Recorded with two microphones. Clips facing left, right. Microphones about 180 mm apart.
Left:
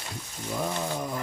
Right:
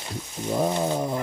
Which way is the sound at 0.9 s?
30° right (ahead or behind).